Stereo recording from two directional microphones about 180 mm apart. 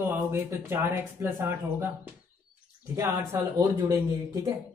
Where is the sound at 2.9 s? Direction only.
15° right (ahead or behind).